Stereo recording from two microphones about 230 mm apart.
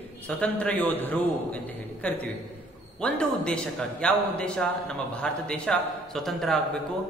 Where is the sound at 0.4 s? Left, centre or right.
Centre.